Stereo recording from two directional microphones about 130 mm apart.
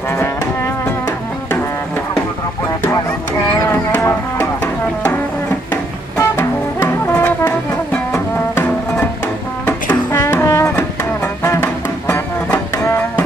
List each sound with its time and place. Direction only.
6.1 s music: 20° left (ahead or behind)
7.1 s brass instrument: 15° left (ahead or behind)
7.9 s music: 10° left (ahead or behind)